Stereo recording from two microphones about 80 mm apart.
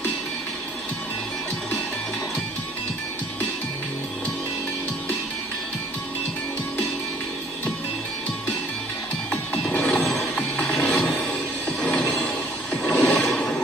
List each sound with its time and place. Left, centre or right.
9.3 s music: centre
12.8 s a sound: centre
13.3 s music: centre